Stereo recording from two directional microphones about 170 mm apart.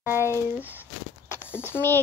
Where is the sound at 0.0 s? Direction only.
15° right (ahead or behind).